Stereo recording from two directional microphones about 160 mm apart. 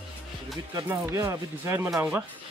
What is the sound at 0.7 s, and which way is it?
Speech, 20° right (ahead or behind).